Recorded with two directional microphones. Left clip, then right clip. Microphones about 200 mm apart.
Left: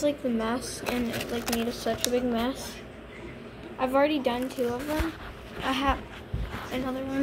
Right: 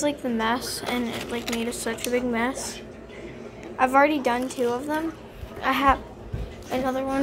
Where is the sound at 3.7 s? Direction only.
10° right (ahead or behind).